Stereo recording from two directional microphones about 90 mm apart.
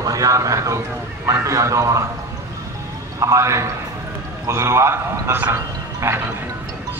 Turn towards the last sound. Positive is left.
turn(degrees=-30)  # may be behind; listen again after turning